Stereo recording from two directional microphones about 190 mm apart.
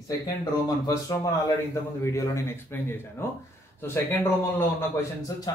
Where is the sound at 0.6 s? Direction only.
20° left (ahead or behind).